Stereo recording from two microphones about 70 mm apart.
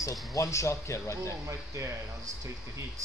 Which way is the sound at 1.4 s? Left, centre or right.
Right.